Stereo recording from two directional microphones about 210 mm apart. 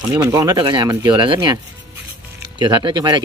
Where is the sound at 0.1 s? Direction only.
15° right (ahead or behind).